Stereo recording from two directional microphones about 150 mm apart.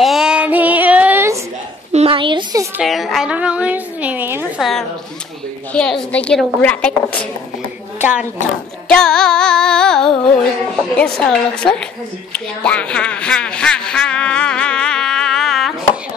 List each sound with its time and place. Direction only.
0.0 s child singing: 5° right (ahead or behind)
1.9 s a sound: 40° right (ahead or behind)
2.8 s a woman's voice: centre (ahead or behind)
4.6 s music: centre (ahead or behind)
5.7 s a woman's voice: 5° left (ahead or behind)
8.0 s speech: 10° right (ahead or behind)
8.8 s music: 5° left (ahead or behind)
12.3 s speech: 5° left (ahead or behind)